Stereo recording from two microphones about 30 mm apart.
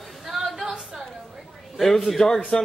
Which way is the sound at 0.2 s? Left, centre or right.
Centre.